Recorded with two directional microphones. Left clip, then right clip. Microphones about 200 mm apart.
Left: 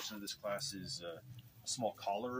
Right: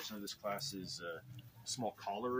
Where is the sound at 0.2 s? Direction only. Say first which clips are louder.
Even; centre (ahead or behind).